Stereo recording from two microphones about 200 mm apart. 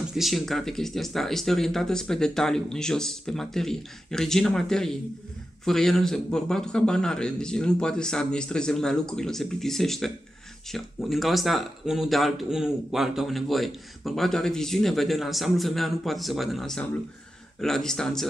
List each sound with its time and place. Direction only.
0.1 s speech: centre (ahead or behind)